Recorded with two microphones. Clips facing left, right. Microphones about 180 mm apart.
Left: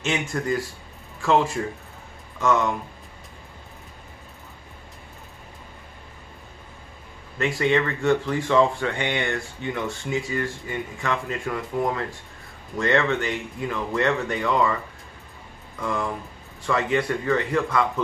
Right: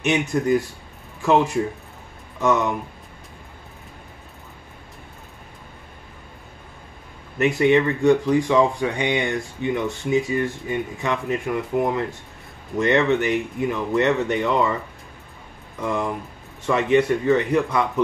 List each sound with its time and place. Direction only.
0.0 s speech: 20° right (ahead or behind)
7.3 s speech: 20° right (ahead or behind)
15.8 s speech: 20° right (ahead or behind)